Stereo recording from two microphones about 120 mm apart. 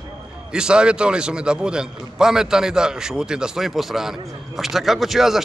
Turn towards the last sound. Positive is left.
turn(degrees=-5)  # may be behind; listen again after turning